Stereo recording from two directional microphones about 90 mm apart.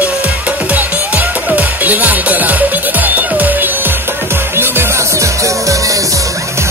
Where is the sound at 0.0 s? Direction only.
15° right (ahead or behind).